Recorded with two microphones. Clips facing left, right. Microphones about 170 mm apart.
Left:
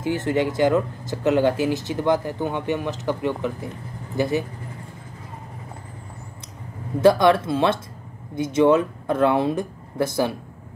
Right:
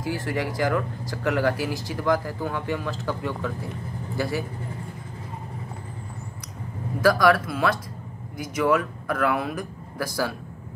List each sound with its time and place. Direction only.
0.0 s speech: 25° left (ahead or behind)
7.0 s speech: 25° left (ahead or behind)